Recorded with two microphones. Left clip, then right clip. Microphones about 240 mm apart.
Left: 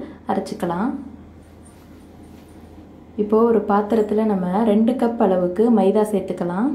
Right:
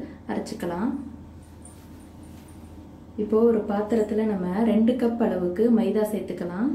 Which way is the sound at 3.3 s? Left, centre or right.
Left.